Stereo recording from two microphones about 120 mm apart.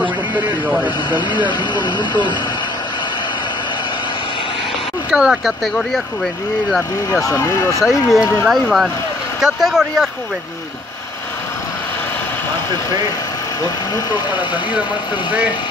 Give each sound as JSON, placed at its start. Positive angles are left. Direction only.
{"t": 0.0, "sound": "a sound", "side_deg": -15}
{"t": 1.8, "sound": "speech", "side_deg": 40}
{"t": 5.1, "sound": "speech", "side_deg": -5}
{"t": 7.1, "sound": "speech", "side_deg": 30}
{"t": 7.8, "sound": "speech", "side_deg": 0}